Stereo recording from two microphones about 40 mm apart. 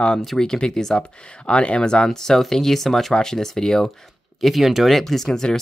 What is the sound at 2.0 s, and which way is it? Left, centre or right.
Speech, centre.